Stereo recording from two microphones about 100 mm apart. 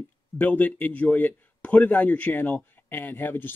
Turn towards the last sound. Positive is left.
turn(degrees=20)  # may be behind; listen again after turning